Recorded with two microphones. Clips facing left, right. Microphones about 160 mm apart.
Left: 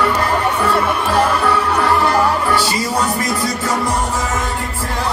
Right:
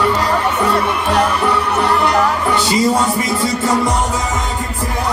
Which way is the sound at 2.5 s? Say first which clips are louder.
Right 3 dB; 20° right (ahead or behind).